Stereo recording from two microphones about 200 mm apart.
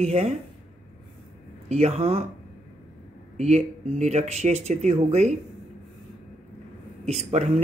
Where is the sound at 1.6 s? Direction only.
30° right (ahead or behind).